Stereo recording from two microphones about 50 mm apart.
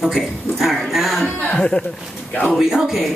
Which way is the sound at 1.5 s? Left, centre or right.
Centre.